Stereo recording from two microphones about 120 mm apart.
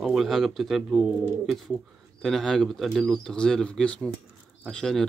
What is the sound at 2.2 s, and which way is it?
Speech, centre (ahead or behind).